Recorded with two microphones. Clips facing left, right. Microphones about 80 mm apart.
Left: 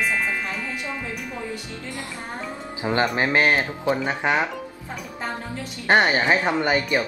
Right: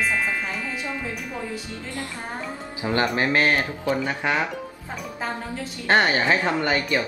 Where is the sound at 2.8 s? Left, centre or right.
Left.